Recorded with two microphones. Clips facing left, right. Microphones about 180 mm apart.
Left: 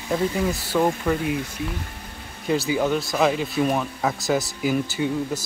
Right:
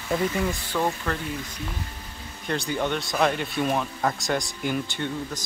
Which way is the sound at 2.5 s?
5° left (ahead or behind).